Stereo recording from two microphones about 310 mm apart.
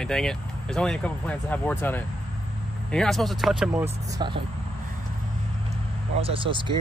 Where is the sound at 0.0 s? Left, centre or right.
Centre.